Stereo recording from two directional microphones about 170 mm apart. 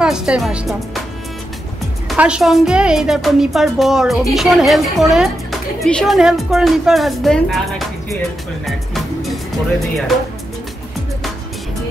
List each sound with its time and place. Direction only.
0.0 s a woman's voice: 5° right (ahead or behind)
2.0 s a woman's voice: 5° right (ahead or behind)
8.6 s music: centre (ahead or behind)